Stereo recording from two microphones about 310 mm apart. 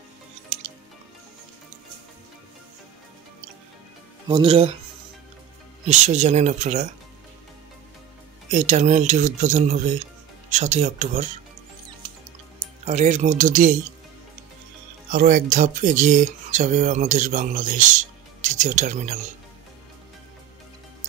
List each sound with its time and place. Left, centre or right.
0.5 s music: right
4.3 s speech: centre
5.9 s speech: right
8.5 s speech: right
12.8 s speech: right
15.0 s speech: right